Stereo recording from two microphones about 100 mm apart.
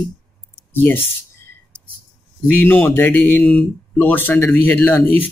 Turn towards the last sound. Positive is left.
turn(degrees=20)  # may be behind; listen again after turning